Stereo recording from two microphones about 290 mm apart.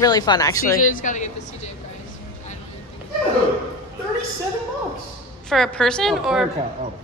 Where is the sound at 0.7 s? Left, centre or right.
Left.